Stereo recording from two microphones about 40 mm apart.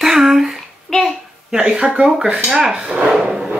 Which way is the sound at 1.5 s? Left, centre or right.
Right.